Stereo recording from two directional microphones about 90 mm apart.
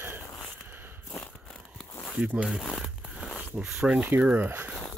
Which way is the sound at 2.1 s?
15° right (ahead or behind).